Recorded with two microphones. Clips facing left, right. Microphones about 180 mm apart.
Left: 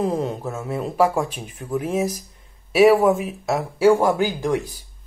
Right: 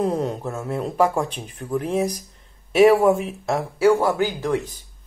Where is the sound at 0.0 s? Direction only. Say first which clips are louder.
Even; centre (ahead or behind).